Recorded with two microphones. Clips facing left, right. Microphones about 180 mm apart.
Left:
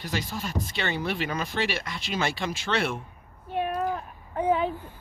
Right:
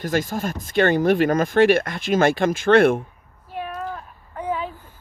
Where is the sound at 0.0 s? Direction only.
50° right (ahead or behind).